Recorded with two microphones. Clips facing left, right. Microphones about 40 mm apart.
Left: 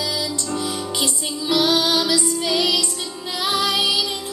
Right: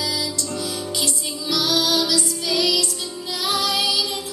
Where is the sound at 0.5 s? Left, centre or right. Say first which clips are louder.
Left 3 dB; left.